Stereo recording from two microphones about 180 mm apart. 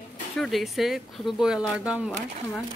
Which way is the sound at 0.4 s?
Centre (ahead or behind).